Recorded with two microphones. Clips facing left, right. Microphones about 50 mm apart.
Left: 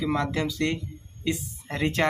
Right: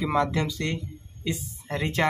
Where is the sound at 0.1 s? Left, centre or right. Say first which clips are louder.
Right 2 dB; centre.